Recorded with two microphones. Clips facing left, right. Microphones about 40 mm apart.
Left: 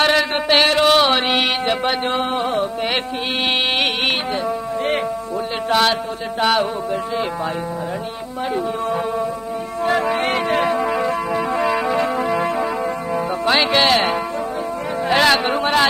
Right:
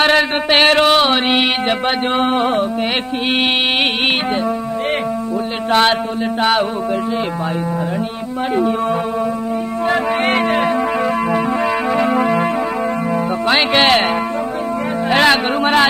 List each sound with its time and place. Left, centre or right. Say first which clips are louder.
0.0 s a sound: right 3 dB; right
0.8 s mantra: right 2 dB; centre
1.7 s speech: right 2 dB; right
5.7 s speech: right 3 dB; right
6.4 s music: right 1 dB; centre
9.8 s music: right 2 dB; centre
13.6 s music: right 3 dB; right
15.0 s speech: right 2 dB; centre